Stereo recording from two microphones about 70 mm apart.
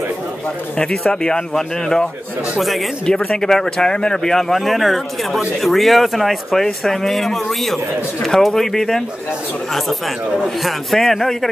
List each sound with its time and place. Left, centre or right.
0.7 s speech: centre
3.1 s speech: centre
10.3 s speech: centre